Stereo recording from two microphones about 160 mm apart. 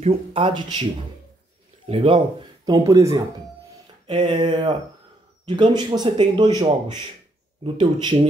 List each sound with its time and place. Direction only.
0.0 s speech: 35° right (ahead or behind)
1.9 s speech: 35° right (ahead or behind)
4.1 s speech: 35° right (ahead or behind)
7.6 s speech: 30° right (ahead or behind)